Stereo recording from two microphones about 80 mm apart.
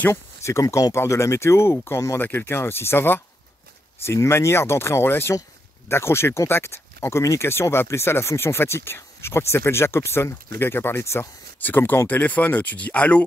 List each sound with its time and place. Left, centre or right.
0.1 s speech: left; by 13.2 s centre